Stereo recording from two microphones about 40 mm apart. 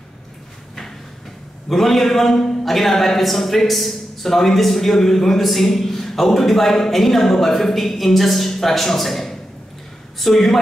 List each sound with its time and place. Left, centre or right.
1.7 s a man's voice: centre